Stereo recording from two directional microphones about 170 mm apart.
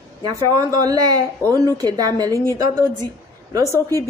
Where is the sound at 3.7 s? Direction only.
20° right (ahead or behind).